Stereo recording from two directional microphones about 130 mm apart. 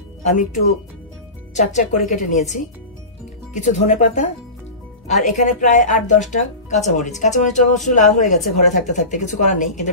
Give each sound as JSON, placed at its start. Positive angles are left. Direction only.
{"t": 1.5, "sound": "a woman's voice", "side_deg": 65}
{"t": 6.3, "sound": "speech", "side_deg": 65}